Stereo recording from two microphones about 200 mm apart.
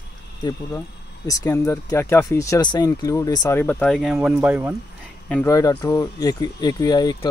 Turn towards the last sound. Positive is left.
turn(degrees=20)  # may be behind; listen again after turning